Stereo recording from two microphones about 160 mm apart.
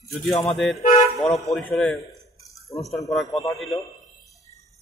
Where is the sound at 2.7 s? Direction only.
20° left (ahead or behind).